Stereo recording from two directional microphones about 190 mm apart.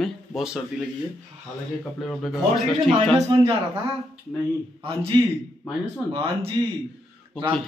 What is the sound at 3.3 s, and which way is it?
Speech, 30° right (ahead or behind).